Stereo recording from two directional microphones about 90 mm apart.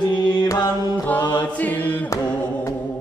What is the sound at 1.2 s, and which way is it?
Chant, 55° left (ahead or behind).